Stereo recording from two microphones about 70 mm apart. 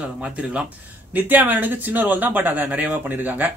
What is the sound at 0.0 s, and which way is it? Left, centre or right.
Speech, centre.